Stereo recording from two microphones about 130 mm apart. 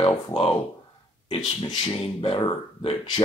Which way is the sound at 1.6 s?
40° left (ahead or behind).